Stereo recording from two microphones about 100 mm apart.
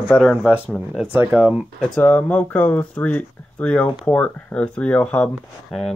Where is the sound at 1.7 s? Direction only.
5° left (ahead or behind).